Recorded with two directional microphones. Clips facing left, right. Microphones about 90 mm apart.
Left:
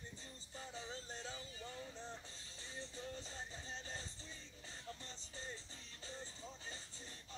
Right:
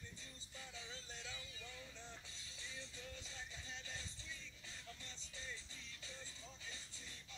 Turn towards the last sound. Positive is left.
turn(degrees=35)  # may be behind; listen again after turning